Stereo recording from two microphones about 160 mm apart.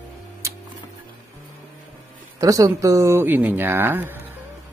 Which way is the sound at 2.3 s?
20° right (ahead or behind).